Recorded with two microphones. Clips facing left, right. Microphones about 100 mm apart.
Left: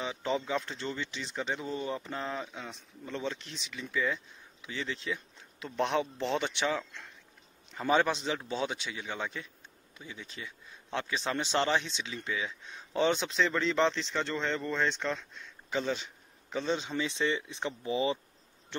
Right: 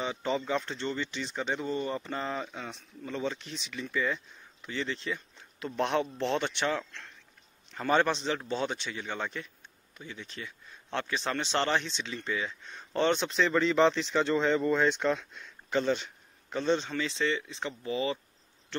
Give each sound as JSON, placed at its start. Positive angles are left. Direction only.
{"t": 0.0, "sound": "speech", "side_deg": 0}
{"t": 7.9, "sound": "speech", "side_deg": 5}
{"t": 17.2, "sound": "speech", "side_deg": 20}